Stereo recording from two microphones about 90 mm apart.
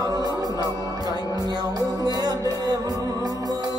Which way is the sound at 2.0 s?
45° right (ahead or behind).